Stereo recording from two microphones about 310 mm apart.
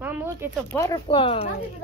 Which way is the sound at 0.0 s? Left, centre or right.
Centre.